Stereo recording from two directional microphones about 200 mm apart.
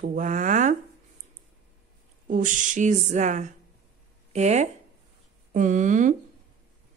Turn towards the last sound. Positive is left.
turn(degrees=-40)  # may be behind; listen again after turning